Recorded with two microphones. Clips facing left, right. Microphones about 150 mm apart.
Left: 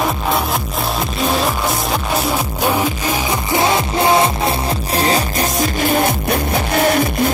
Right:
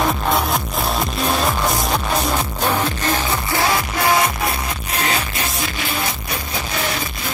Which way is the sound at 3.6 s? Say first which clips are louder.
Left 4 dB; 25° left (ahead or behind).